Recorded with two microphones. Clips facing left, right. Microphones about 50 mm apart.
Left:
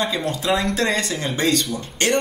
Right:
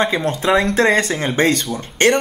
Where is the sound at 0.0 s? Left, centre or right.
Right.